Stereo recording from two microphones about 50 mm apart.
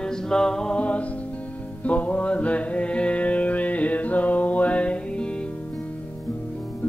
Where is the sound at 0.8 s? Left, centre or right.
Left.